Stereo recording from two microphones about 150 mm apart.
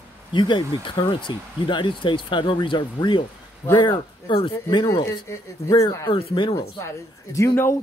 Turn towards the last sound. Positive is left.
turn(degrees=20)  # may be behind; listen again after turning